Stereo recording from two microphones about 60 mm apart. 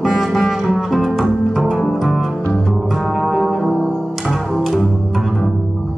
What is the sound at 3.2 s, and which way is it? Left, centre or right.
Music, centre.